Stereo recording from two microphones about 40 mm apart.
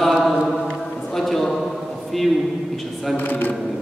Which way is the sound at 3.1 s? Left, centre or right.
Left.